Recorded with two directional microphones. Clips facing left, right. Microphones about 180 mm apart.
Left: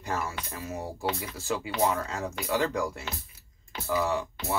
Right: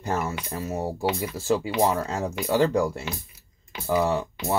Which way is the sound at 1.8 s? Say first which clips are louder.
Right 4 dB; 30° right (ahead or behind).